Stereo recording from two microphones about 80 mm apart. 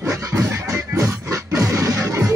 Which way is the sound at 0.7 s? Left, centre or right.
Right.